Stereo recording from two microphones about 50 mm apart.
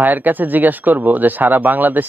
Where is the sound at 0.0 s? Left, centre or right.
Right.